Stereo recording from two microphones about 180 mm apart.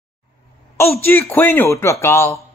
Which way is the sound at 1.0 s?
10° left (ahead or behind).